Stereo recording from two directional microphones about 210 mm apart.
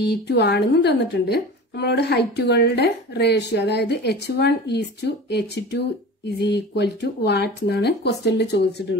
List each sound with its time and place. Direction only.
0.0 s a woman's voice: 50° left (ahead or behind)